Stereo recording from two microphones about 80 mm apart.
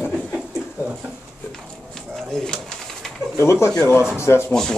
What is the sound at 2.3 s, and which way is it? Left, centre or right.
Pigeon, centre.